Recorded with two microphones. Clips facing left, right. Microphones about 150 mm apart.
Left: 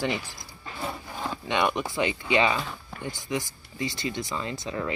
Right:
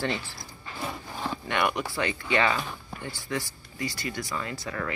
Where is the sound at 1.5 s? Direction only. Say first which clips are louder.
Left 2 dB; 20° left (ahead or behind).